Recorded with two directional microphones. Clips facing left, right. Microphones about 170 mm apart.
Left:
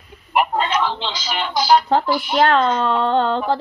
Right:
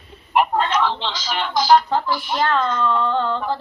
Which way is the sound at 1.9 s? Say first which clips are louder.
Left 4 dB; 70° left (ahead or behind).